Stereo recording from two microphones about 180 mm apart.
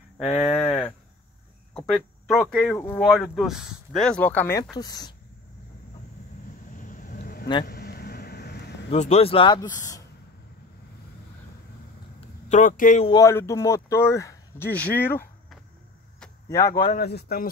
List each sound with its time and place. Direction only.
0.4 s speech: centre (ahead or behind); by 5.1 s 20° left (ahead or behind)
6.7 s vehicle: 45° left (ahead or behind); by 8.7 s 65° left (ahead or behind)
8.9 s speech: 35° left (ahead or behind); by 10.0 s 20° left (ahead or behind)
12.4 s speech: 45° left (ahead or behind)
13.2 s speech: 15° left (ahead or behind)
16.4 s speech: 15° left (ahead or behind)
16.9 s a man's voice: 60° left (ahead or behind)